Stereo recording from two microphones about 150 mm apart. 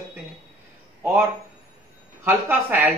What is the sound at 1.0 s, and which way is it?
Speech, 15° right (ahead or behind).